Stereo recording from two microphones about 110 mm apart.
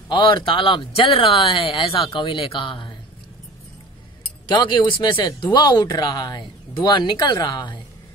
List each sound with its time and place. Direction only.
0.1 s speech: 50° left (ahead or behind)
4.5 s speech: 45° left (ahead or behind)